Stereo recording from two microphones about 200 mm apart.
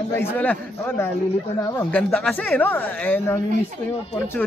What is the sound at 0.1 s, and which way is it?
Speech, 10° left (ahead or behind).